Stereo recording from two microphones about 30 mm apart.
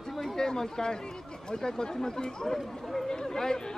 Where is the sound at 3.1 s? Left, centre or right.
Left.